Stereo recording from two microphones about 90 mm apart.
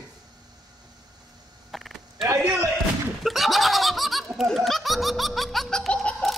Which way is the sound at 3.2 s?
Centre (ahead or behind).